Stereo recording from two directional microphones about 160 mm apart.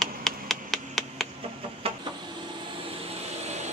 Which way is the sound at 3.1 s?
45° right (ahead or behind).